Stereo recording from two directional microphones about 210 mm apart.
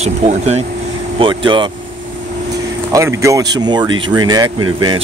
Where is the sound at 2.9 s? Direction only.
15° right (ahead or behind).